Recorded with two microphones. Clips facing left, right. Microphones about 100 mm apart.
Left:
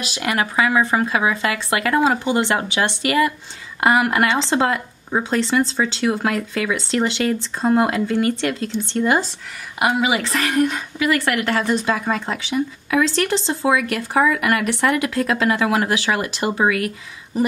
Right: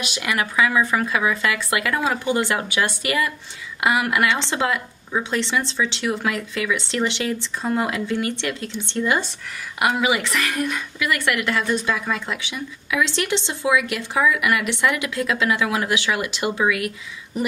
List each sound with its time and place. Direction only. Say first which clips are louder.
0.0 s a woman's voice: left 2 dB; 35° left (ahead or behind)
9.8 s a woman's voice: left 2 dB; 25° left (ahead or behind)